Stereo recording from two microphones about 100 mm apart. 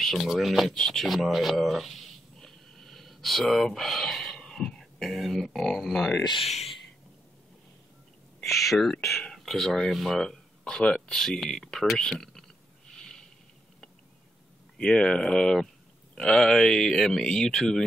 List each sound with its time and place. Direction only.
0.0 s speech: centre (ahead or behind)
6.4 s speech: 90° left
8.4 s speech: centre (ahead or behind)
12.9 s snort: 5° left (ahead or behind)
14.8 s speech: 10° left (ahead or behind)